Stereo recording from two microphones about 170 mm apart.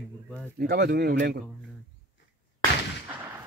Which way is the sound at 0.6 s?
70° right (ahead or behind).